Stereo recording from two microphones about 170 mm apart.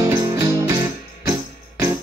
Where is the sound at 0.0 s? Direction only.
20° right (ahead or behind).